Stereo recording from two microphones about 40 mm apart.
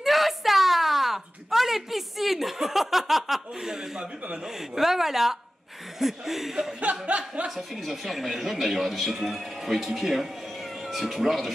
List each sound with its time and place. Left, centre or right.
0.0 s a sound: centre
4.7 s speech: centre
6.8 s chuckle: right
7.4 s speech: centre